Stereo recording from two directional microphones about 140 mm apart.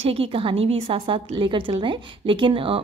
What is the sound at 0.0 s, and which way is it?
Speech, 45° right (ahead or behind).